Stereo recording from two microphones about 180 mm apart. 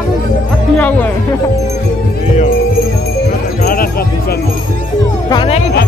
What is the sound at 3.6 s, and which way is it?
Music, 55° left (ahead or behind).